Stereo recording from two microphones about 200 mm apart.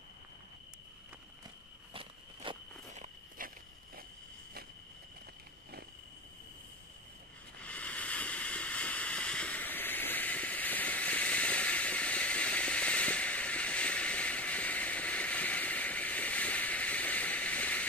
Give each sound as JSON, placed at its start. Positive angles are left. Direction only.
{"t": 2.4, "sound": "walk", "side_deg": -25}
{"t": 2.9, "sound": "walk", "side_deg": -40}
{"t": 7.6, "sound": "a sound", "side_deg": 5}